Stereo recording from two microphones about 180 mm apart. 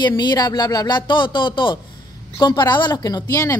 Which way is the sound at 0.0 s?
25° left (ahead or behind).